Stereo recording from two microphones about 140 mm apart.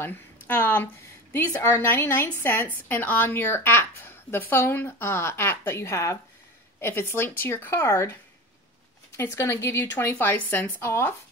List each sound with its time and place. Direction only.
0.0 s a woman's voice: 15° left (ahead or behind)
9.1 s a woman's voice: 20° left (ahead or behind)